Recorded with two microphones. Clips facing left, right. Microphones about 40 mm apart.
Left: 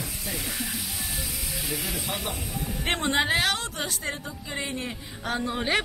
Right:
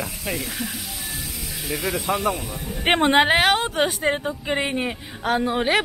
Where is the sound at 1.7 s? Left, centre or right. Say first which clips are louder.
Right 9 dB; centre.